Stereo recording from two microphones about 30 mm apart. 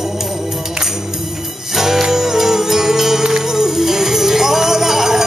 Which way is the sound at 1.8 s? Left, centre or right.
Centre.